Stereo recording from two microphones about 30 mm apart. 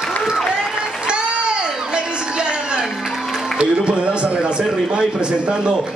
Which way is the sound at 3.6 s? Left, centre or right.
Right.